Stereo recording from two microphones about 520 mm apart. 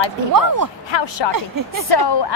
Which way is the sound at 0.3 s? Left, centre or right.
Right.